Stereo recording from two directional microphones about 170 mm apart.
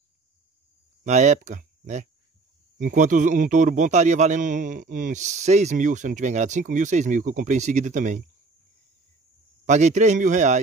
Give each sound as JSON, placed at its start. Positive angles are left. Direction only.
{"t": 1.0, "sound": "a man's voice", "side_deg": -45}
{"t": 9.7, "sound": "a man's voice", "side_deg": -45}